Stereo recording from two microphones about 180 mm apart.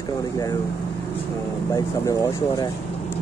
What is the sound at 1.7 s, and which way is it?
Speech, 20° left (ahead or behind).